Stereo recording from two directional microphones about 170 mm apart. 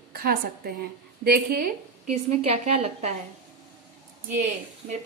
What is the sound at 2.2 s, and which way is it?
Speech, 40° right (ahead or behind).